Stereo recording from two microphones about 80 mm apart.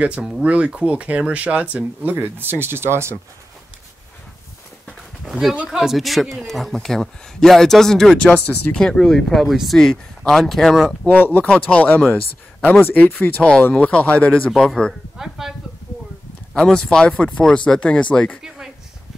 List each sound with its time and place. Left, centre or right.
0.4 s speech: centre; by 3.2 s right
4.8 s a sound: centre
5.7 s a man's voice: centre
11.1 s speech: left
15.1 s a man's voice: centre
16.5 s speech: centre